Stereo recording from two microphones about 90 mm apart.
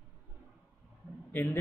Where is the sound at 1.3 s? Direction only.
20° left (ahead or behind).